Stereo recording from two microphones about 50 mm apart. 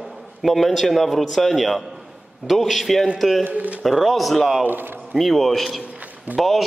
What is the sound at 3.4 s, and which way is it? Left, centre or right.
Speech, right.